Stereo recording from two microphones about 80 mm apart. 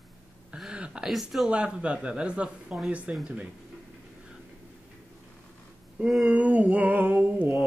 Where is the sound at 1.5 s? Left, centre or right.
Centre.